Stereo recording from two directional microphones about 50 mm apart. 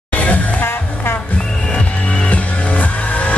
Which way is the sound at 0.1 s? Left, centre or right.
Left.